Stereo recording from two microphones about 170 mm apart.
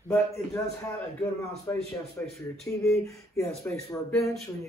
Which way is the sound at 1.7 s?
10° left (ahead or behind).